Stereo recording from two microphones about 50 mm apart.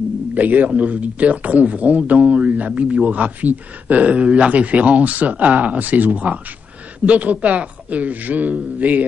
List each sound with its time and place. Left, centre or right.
0.3 s a man's voice: right